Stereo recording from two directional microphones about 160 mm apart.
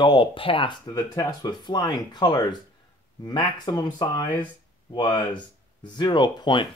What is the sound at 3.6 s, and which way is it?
Speech, 25° left (ahead or behind).